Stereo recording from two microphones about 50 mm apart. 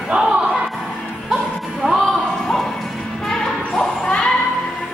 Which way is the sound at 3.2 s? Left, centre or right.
Centre.